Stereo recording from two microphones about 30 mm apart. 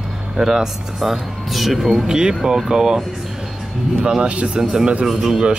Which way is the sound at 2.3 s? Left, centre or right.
Centre.